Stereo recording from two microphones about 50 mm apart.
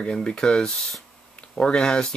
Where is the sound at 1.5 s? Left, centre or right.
Centre.